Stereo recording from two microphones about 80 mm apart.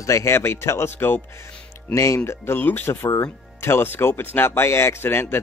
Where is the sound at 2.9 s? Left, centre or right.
Left.